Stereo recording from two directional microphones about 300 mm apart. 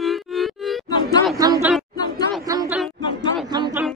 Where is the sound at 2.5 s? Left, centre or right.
Centre.